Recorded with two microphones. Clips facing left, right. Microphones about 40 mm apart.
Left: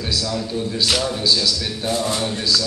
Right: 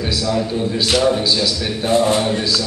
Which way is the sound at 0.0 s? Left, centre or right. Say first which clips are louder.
Right 5 dB; centre.